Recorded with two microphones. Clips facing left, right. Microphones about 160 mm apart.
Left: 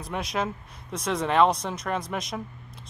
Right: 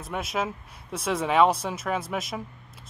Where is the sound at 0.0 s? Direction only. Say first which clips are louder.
Even; centre (ahead or behind).